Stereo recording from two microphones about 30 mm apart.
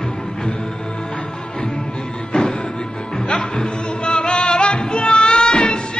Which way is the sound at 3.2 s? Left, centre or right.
Left.